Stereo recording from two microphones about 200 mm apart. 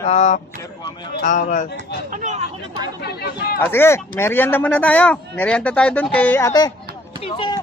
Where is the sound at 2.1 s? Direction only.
40° right (ahead or behind).